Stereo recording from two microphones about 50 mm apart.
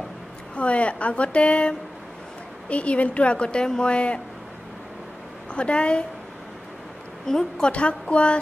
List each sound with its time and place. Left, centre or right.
0.6 s a woman's voice: left
5.5 s a woman's voice: left
7.2 s a woman's voice: centre
7.7 s a woman's voice: left